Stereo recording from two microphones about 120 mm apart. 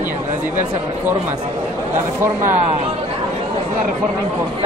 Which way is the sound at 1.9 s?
20° right (ahead or behind).